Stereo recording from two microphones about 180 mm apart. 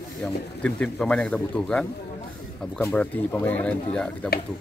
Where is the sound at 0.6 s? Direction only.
5° left (ahead or behind).